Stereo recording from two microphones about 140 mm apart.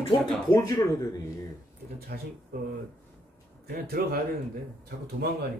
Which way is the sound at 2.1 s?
90° right.